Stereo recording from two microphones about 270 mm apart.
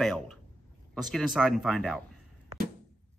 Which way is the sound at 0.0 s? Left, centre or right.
Centre.